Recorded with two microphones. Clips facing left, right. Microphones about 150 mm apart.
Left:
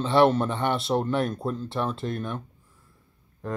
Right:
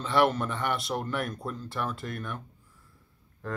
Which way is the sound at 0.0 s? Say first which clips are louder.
Left 5 dB; 30° left (ahead or behind).